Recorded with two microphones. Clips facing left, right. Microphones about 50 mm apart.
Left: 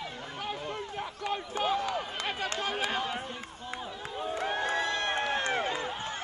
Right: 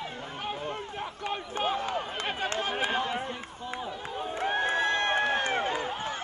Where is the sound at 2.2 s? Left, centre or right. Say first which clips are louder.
Right 2 dB; right.